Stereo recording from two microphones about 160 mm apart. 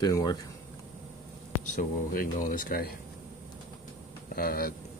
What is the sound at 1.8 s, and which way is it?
Speech, 60° left (ahead or behind).